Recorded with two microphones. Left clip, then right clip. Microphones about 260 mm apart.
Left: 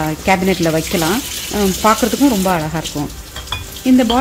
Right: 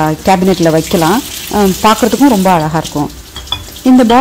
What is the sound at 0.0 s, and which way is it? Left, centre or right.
Speech, centre.